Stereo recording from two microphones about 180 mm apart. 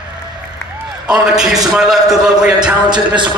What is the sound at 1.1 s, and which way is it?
A man's voice, 5° right (ahead or behind).